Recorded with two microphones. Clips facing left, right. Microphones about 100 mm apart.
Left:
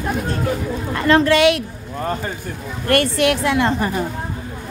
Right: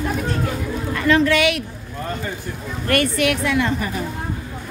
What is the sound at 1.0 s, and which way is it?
Speech, 40° left (ahead or behind).